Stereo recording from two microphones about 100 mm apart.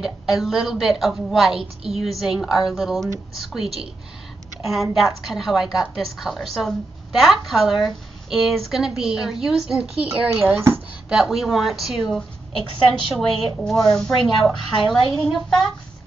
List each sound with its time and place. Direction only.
0.0 s a woman's voice: centre (ahead or behind)
10.4 s speech: 30° right (ahead or behind)
11.1 s a woman's voice: 5° right (ahead or behind)
13.1 s a woman's voice: centre (ahead or behind)
14.4 s a woman's voice: 40° left (ahead or behind)
15.0 s a woman's voice: centre (ahead or behind)